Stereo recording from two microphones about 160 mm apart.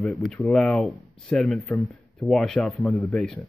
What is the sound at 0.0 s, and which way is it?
Speech, centre (ahead or behind).